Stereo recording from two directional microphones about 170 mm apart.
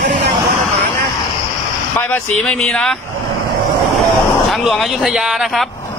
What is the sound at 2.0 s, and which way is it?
Speech, 10° left (ahead or behind).